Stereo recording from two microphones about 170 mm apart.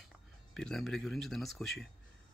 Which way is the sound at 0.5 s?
Centre (ahead or behind).